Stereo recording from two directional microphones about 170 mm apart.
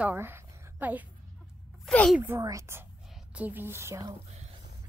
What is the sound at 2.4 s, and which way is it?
A woman's voice, 20° right (ahead or behind).